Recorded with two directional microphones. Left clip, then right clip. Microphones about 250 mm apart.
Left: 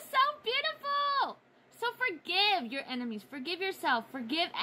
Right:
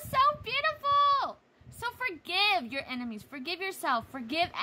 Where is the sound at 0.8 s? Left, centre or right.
Right.